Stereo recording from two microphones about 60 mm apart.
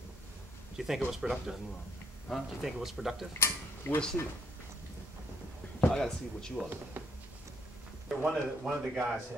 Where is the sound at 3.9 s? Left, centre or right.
Left.